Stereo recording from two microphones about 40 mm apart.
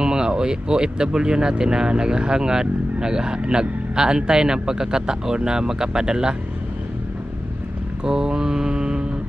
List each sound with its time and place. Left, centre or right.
0.0 s speech: centre
8.0 s mantra: centre